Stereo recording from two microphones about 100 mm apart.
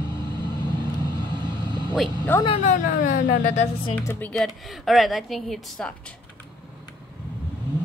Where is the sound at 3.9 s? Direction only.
20° left (ahead or behind).